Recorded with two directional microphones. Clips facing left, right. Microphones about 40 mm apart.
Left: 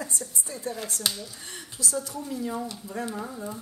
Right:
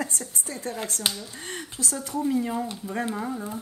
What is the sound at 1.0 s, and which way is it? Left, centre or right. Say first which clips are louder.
Speech: right 2 dB; right.